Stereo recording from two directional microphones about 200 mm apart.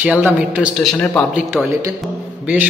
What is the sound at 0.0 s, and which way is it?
Speech, 10° right (ahead or behind).